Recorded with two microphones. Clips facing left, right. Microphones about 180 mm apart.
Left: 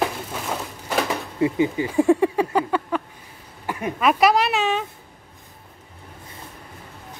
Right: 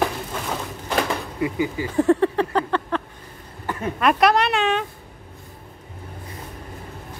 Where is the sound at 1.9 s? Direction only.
10° left (ahead or behind).